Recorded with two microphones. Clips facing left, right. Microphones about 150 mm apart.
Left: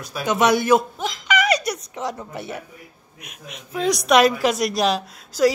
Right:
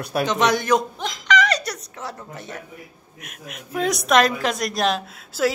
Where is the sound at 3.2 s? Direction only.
5° right (ahead or behind).